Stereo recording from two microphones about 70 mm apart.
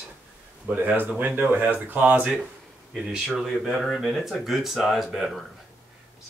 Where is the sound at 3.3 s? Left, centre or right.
Centre.